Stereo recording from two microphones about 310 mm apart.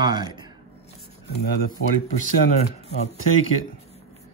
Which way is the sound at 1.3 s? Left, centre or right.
Left.